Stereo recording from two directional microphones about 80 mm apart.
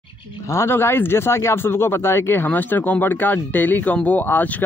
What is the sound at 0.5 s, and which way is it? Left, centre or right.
Speech, left.